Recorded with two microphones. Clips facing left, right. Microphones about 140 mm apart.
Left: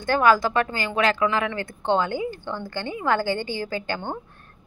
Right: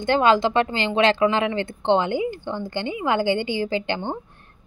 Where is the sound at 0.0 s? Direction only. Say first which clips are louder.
Right 1 dB; 20° right (ahead or behind).